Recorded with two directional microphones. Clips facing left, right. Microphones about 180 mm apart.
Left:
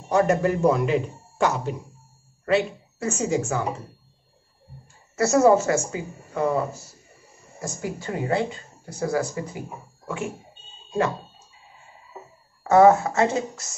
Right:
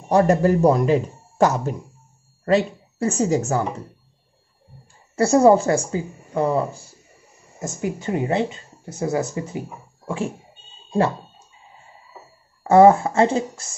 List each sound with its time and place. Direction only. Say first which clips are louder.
0.1 s speech: right 4 dB; 35° right (ahead or behind)
5.1 s speech: right 3 dB; 30° right (ahead or behind)
7.6 s speech: right 4 dB; 20° right (ahead or behind)
10.0 s a sound: right 4 dB; 30° right (ahead or behind)
12.6 s speech: right 3 dB; 30° right (ahead or behind)